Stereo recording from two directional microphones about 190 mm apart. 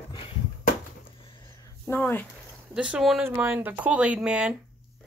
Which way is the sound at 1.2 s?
25° left (ahead or behind).